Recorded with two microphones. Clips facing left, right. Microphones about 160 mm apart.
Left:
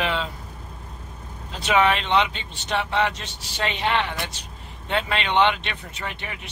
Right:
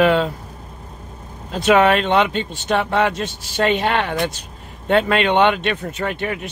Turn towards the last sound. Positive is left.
turn(degrees=-50)  # may be behind; listen again after turning